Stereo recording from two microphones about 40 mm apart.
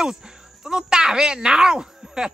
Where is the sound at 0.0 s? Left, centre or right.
Centre.